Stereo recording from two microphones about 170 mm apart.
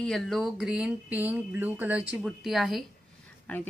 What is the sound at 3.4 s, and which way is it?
Speech, 10° left (ahead or behind).